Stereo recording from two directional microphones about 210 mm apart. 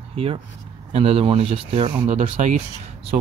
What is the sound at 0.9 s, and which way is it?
Speech, 25° right (ahead or behind).